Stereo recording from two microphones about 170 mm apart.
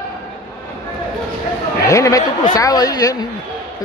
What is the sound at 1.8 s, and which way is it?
Speech, 20° left (ahead or behind).